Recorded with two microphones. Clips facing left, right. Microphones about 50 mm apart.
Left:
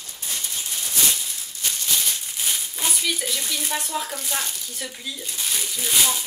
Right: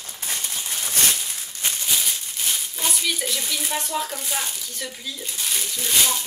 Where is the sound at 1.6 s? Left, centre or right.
Right.